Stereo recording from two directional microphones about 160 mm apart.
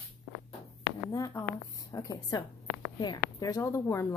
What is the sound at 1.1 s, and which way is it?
A woman's voice, 20° left (ahead or behind).